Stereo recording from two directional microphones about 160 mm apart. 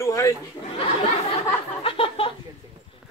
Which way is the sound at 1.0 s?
35° left (ahead or behind).